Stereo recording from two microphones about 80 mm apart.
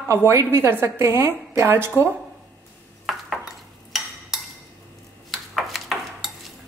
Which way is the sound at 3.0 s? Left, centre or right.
Centre.